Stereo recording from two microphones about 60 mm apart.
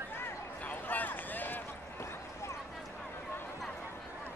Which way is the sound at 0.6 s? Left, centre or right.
Left.